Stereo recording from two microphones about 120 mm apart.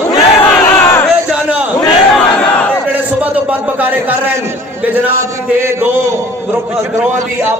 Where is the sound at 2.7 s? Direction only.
10° right (ahead or behind).